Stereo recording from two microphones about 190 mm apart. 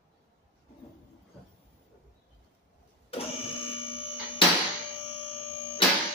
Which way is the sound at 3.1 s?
30° left (ahead or behind).